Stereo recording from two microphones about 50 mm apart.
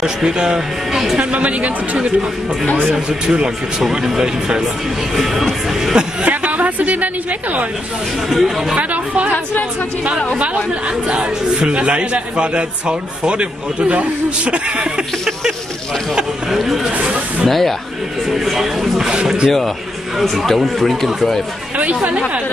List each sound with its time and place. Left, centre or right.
0.0 s speech: centre
1.1 s a man's voice: right
5.1 s speech: centre
6.2 s a woman's voice: right
8.3 s speech: centre
8.7 s a man's voice: right
9.3 s speech: left
10.4 s a man's voice: right
16.5 s speech: centre
17.0 s speech: centre
17.5 s speech: centre
20.2 s speech: centre
21.7 s speech: right